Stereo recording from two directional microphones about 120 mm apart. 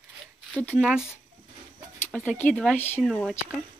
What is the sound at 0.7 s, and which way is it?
Speech, 5° right (ahead or behind).